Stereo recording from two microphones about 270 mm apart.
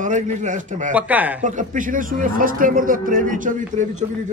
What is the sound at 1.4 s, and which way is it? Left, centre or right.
A man's voice, right.